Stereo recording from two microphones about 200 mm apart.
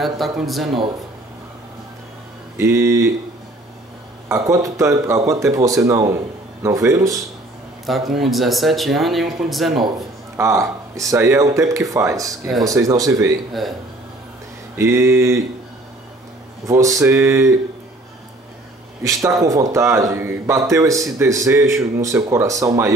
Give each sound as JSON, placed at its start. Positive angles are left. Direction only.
{"t": 0.0, "sound": "speech", "side_deg": 0}
{"t": 2.5, "sound": "speech", "side_deg": -15}
{"t": 4.3, "sound": "speech", "side_deg": -15}
{"t": 8.1, "sound": "speech", "side_deg": 0}
{"t": 10.3, "sound": "speech", "side_deg": -15}
{"t": 13.5, "sound": "speech", "side_deg": 0}
{"t": 14.8, "sound": "speech", "side_deg": -15}
{"t": 16.6, "sound": "speech", "side_deg": -15}
{"t": 19.0, "sound": "speech", "side_deg": -15}